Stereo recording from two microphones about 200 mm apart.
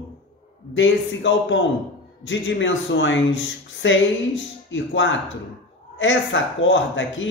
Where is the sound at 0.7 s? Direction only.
70° left (ahead or behind).